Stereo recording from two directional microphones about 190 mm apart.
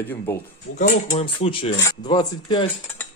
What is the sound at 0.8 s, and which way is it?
Speech, 35° left (ahead or behind).